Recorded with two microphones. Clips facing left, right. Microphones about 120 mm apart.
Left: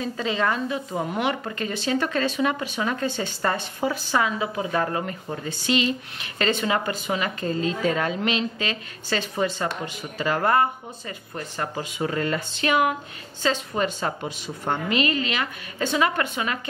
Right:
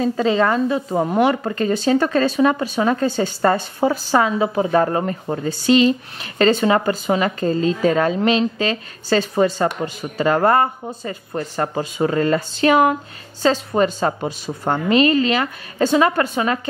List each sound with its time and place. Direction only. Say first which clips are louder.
0.0 s a woman's voice: right 8 dB; 40° right (ahead or behind)